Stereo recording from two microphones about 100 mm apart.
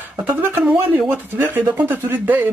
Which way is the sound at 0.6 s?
5° right (ahead or behind).